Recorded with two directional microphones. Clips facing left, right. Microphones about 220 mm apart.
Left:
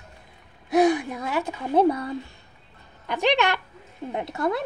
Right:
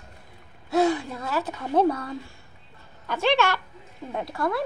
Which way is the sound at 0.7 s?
15° left (ahead or behind).